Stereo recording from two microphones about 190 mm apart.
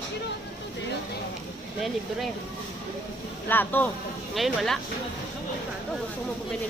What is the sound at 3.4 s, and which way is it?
Speech, 10° left (ahead or behind).